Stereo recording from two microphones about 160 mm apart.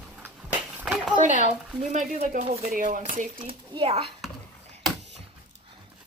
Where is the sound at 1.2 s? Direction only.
50° right (ahead or behind).